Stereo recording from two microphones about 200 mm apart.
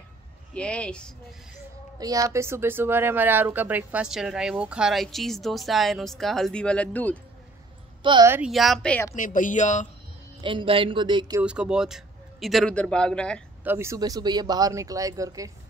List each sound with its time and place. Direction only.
0.6 s speech: 5° left (ahead or behind)
2.0 s speech: 15° right (ahead or behind); by 7.2 s 10° left (ahead or behind)
8.0 s a woman's voice: 25° right (ahead or behind)
8.3 s speech: 5° right (ahead or behind)
9.1 s speech: 40° left (ahead or behind)
10.4 s speech: 25° right (ahead or behind)
11.4 s speech: 5° right (ahead or behind)
13.7 s speech: 15° right (ahead or behind)